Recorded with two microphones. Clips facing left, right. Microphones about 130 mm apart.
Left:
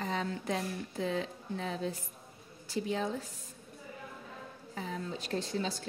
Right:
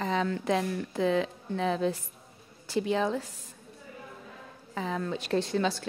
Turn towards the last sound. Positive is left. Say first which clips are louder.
# right 7 dB
turn(degrees=-70)  # may be behind; listen again after turning